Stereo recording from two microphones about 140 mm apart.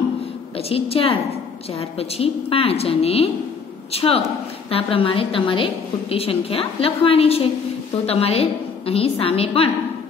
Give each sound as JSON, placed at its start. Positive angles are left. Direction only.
{"t": 0.6, "sound": "a woman's voice", "side_deg": 45}